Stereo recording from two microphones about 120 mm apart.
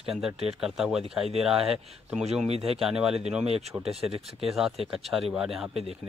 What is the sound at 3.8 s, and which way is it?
Speech, 55° right (ahead or behind).